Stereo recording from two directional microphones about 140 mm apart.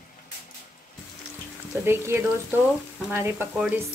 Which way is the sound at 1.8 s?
15° right (ahead or behind).